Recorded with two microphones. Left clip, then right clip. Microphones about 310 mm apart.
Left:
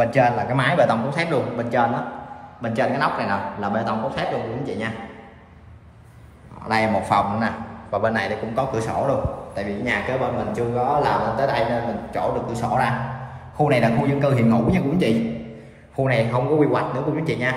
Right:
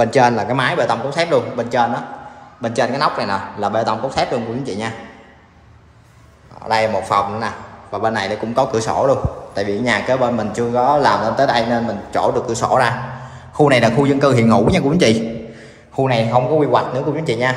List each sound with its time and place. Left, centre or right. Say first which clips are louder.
0.0 s a man's voice: right 5 dB; centre
6.7 s a man's voice: right 4 dB; centre
16.0 s a man's voice: right 5 dB; centre